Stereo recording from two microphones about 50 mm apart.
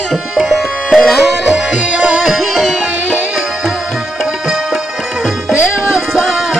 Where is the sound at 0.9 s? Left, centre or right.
Centre.